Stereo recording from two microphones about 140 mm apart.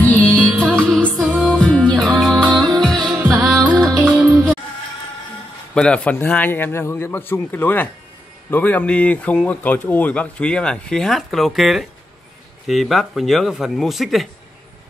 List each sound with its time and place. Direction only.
0.0 s music: 10° left (ahead or behind)
3.2 s music: 10° right (ahead or behind)
3.8 s music: centre (ahead or behind)
4.2 s music: 10° right (ahead or behind)
5.8 s a man's voice: 10° left (ahead or behind)